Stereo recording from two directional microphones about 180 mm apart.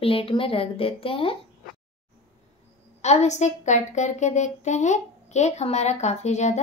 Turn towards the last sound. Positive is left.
turn(degrees=40)  # may be behind; listen again after turning